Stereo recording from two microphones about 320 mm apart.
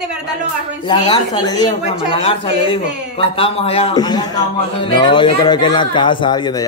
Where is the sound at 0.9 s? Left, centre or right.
Centre.